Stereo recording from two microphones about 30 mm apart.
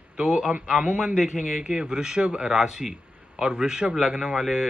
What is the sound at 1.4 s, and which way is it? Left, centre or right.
Speech, right.